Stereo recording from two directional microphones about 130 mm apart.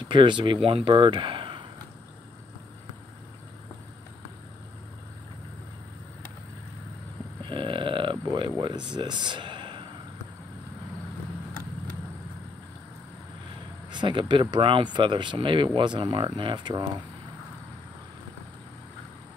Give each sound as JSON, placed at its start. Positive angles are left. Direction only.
{"t": 0.1, "sound": "speech", "side_deg": -40}
{"t": 7.4, "sound": "a sound", "side_deg": -40}
{"t": 13.8, "sound": "speech", "side_deg": -35}